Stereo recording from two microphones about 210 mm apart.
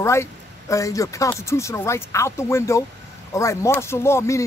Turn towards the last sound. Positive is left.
turn(degrees=15)  # may be behind; listen again after turning